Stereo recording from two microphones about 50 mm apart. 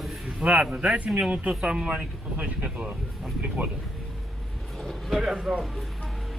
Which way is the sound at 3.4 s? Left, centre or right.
Right.